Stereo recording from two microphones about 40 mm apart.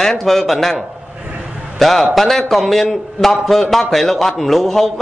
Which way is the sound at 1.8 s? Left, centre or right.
Centre.